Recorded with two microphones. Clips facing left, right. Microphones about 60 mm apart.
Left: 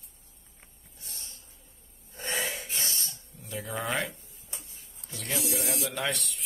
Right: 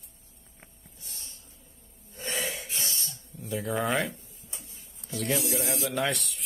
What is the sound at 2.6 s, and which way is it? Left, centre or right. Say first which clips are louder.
Cough: even; left.